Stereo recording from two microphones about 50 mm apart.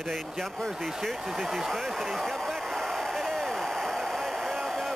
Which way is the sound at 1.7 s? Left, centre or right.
Centre.